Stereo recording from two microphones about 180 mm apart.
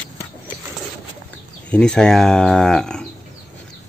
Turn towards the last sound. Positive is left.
turn(degrees=5)  # may be behind; listen again after turning